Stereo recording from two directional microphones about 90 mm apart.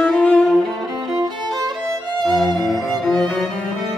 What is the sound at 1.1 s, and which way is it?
Music, 45° right (ahead or behind).